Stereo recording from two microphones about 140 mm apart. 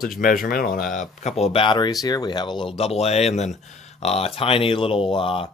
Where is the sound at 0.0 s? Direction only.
90° left.